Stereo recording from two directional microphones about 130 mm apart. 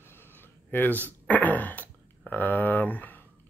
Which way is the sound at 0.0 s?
15° left (ahead or behind).